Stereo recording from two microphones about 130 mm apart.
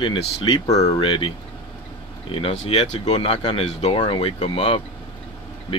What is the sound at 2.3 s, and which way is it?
Speech, 55° left (ahead or behind).